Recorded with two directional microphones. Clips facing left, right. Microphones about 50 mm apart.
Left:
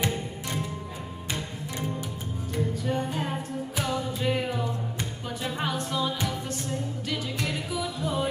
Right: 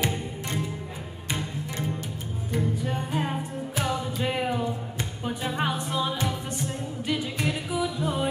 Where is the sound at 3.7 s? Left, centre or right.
Centre.